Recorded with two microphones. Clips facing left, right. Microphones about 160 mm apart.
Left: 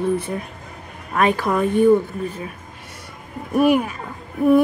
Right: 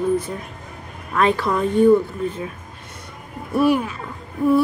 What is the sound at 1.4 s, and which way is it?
Speech, 55° left (ahead or behind).